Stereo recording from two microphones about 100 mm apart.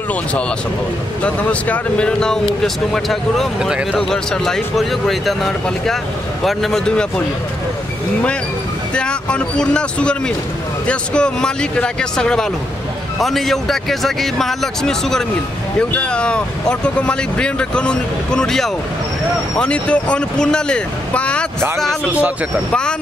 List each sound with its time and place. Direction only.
0.1 s speech: 15° left (ahead or behind); by 4.0 s 10° right (ahead or behind)
4.0 s speech: 5° left (ahead or behind)
8.9 s speech: 10° left (ahead or behind)
22.0 s speech: 15° right (ahead or behind)